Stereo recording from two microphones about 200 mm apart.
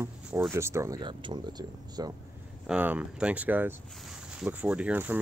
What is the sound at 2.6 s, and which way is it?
Speech, 10° right (ahead or behind).